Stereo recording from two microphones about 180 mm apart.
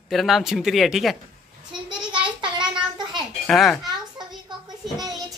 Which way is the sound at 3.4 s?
Centre (ahead or behind).